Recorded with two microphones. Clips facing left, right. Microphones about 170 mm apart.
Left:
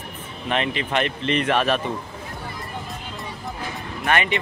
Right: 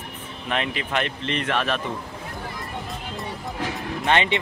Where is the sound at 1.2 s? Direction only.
15° left (ahead or behind).